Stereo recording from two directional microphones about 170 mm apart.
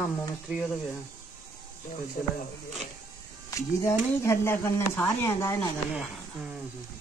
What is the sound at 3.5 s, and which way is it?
Speech, 15° left (ahead or behind).